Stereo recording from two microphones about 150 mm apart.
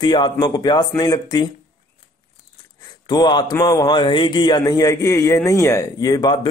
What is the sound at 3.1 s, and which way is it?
Speech, 30° left (ahead or behind).